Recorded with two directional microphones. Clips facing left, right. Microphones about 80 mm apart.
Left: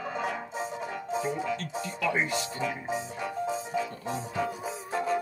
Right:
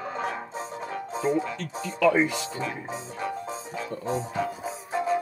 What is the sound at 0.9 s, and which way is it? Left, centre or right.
Speech, right.